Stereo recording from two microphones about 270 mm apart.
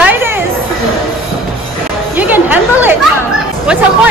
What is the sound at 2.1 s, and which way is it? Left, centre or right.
Speech, centre.